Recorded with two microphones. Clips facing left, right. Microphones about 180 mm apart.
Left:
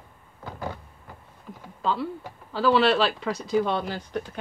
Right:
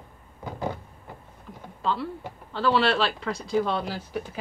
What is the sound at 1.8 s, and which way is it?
Speech, centre (ahead or behind).